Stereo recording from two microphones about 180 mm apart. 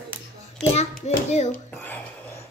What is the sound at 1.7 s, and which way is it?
Whispering, 10° left (ahead or behind).